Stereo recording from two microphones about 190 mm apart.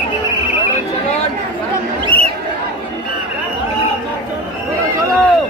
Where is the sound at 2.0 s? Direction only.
30° right (ahead or behind).